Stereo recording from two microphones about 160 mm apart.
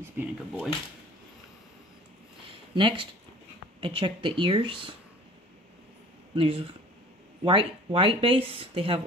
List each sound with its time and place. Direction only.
0.0 s speech: 10° right (ahead or behind)
2.4 s a sound: 30° right (ahead or behind)
3.8 s speech: 30° right (ahead or behind)
6.3 s speech: 35° right (ahead or behind)